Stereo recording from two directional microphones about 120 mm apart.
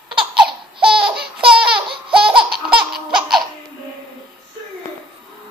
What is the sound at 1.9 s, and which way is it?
Laughter, 45° right (ahead or behind).